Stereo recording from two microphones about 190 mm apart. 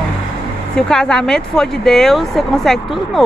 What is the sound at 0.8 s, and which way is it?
Speech, 5° left (ahead or behind).